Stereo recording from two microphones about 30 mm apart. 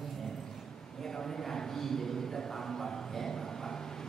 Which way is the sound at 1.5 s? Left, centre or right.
Centre.